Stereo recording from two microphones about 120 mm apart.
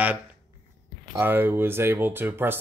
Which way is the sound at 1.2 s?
15° right (ahead or behind).